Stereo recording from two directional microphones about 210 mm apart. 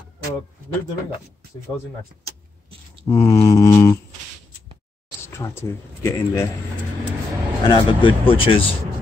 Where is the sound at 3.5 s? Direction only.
15° left (ahead or behind).